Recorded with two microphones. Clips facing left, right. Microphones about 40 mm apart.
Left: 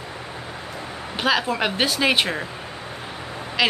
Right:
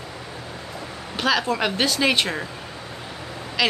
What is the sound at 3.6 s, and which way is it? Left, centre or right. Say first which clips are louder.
Speech: left 1 dB; centre.